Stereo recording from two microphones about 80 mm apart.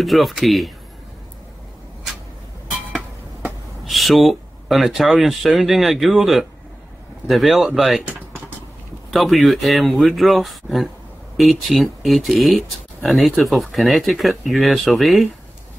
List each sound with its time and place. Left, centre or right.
0.0 s speech: centre
3.8 s speech: centre
9.1 s speech: centre